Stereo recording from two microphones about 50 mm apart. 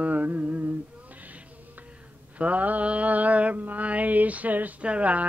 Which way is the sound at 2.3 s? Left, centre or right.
Right.